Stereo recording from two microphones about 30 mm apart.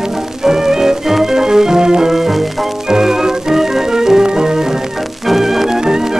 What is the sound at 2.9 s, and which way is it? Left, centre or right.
Organ, centre.